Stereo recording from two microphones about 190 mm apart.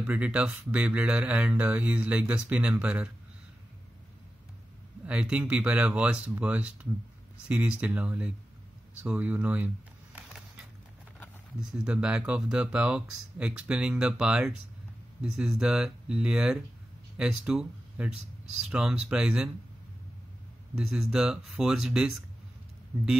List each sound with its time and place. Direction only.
0.0 s speech: 5° right (ahead or behind)
5.0 s speech: 5° right (ahead or behind)
10.1 s a sound: 5° right (ahead or behind)
11.7 s speech: 5° right (ahead or behind)
20.7 s speech: 5° right (ahead or behind)